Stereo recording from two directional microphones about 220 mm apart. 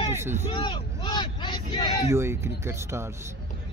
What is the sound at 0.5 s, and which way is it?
Speech, 20° left (ahead or behind).